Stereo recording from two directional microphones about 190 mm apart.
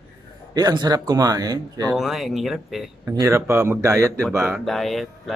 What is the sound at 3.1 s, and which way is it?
Speech, 15° right (ahead or behind).